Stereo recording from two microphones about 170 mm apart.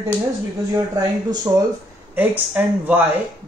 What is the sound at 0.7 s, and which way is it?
Speech, 20° right (ahead or behind).